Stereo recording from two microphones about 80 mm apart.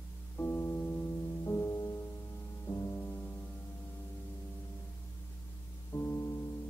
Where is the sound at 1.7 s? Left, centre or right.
Left.